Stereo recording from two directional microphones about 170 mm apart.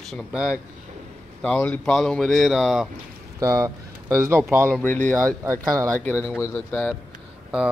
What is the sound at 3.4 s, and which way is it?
Speech, 20° right (ahead or behind).